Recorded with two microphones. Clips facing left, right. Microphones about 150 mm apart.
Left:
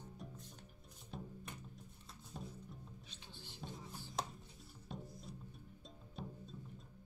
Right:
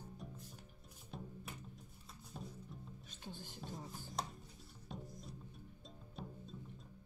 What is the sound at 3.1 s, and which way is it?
Music, 45° right (ahead or behind).